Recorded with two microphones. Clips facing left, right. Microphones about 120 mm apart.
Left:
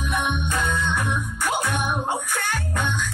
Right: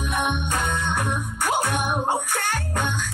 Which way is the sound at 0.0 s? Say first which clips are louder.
Even; 45° right (ahead or behind).